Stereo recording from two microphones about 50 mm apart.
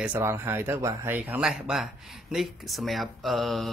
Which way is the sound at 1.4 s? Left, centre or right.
Centre.